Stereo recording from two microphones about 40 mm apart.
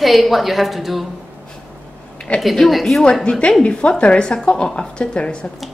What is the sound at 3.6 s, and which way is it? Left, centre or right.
Speech, left.